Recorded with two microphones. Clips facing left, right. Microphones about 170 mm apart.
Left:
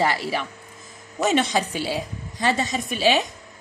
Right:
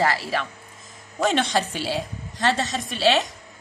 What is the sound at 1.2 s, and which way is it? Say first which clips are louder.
A woman's voice: left 1 dB; 5° left (ahead or behind).